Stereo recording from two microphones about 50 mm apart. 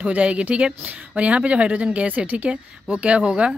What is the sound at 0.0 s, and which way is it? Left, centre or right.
Speech, right.